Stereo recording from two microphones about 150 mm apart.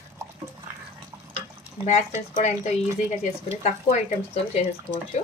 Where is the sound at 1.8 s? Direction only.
50° left (ahead or behind).